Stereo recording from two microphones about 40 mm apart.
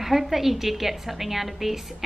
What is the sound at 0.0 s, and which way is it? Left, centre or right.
A woman's voice, centre.